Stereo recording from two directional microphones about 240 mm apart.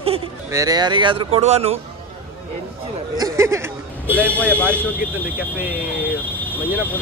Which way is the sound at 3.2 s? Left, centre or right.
Centre.